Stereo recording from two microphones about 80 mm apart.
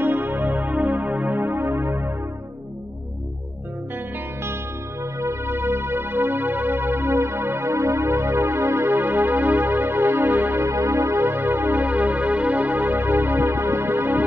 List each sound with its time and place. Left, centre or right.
0.0 s music: right
5.2 s music: right